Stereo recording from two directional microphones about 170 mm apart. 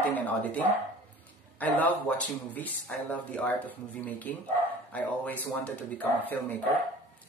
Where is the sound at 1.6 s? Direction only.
10° left (ahead or behind).